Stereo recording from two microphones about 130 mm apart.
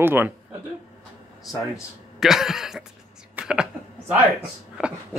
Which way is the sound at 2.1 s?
5° right (ahead or behind).